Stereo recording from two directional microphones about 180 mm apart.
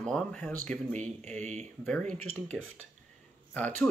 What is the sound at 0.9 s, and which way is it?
Speech, 40° right (ahead or behind).